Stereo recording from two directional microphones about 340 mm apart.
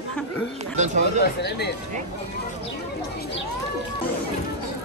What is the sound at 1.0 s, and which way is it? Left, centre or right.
Speech, left.